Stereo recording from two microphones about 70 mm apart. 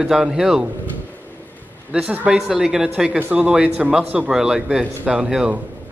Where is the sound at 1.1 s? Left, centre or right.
Left.